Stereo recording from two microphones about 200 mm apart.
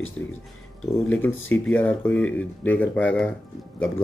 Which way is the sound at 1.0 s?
10° left (ahead or behind).